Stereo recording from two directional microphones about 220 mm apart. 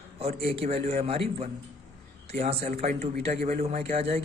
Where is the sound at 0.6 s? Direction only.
30° right (ahead or behind).